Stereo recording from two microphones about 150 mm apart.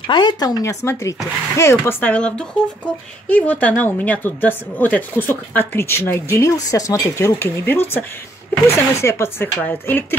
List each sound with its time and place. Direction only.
0.1 s speech: 30° left (ahead or behind); by 10.0 s 10° left (ahead or behind)